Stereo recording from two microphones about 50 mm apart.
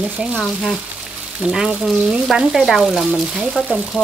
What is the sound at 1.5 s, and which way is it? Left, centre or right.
Speech, centre.